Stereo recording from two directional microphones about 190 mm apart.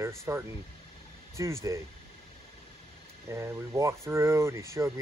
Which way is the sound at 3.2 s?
15° right (ahead or behind).